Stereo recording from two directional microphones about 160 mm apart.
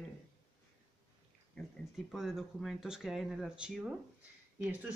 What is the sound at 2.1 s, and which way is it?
Speech, centre (ahead or behind).